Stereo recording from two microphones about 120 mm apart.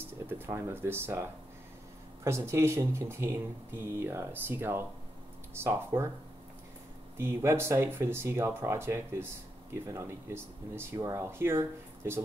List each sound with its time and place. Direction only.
0.3 s speech: 20° right (ahead or behind)
2.2 s speech: 20° right (ahead or behind)
7.2 s speech: 20° right (ahead or behind)